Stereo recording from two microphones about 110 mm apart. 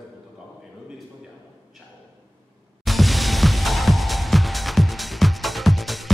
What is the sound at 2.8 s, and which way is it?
Music, centre (ahead or behind).